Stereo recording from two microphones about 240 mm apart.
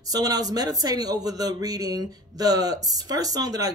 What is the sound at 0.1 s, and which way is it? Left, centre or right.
Speech, centre.